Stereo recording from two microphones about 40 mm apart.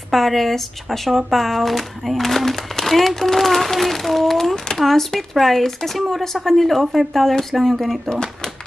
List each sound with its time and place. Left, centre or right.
0.1 s speech: centre
8.1 s speech: centre